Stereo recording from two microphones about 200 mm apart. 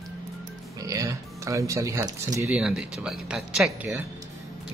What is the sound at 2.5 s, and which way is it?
Speech, 5° right (ahead or behind).